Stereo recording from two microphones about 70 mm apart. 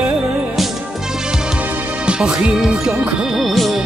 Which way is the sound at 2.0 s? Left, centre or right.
Centre.